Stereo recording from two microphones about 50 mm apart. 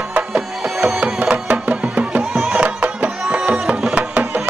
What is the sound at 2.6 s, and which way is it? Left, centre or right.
Music, right.